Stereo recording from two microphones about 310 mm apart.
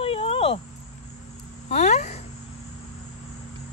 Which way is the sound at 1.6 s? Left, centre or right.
Left.